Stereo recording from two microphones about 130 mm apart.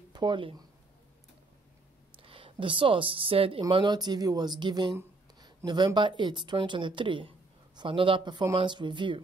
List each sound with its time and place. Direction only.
0.1 s speech: 35° right (ahead or behind)
2.1 s speech: 45° right (ahead or behind)
3.6 s speech: 35° right (ahead or behind)
4.9 s a sound: 20° right (ahead or behind)
5.7 s speech: 35° right (ahead or behind)